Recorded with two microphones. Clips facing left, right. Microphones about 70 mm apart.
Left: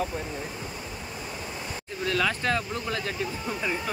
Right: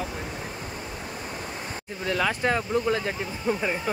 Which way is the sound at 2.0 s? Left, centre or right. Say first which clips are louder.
Right 1 dB; centre.